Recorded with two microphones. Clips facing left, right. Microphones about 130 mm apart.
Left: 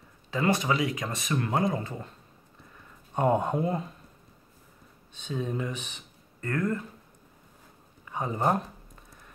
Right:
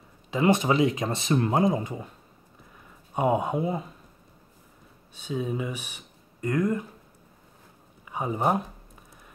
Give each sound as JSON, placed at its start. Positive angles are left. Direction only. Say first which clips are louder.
{"t": 0.3, "sound": "speech", "louder": "right 4 dB", "side_deg": -20}
{"t": 3.2, "sound": "speech", "louder": "right 1 dB", "side_deg": -10}
{"t": 5.1, "sound": "speech", "louder": "right 2 dB", "side_deg": -10}
{"t": 8.1, "sound": "speech", "louder": "right 1 dB", "side_deg": -10}